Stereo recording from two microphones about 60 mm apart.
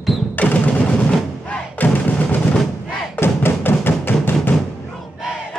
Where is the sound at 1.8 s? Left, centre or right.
Left.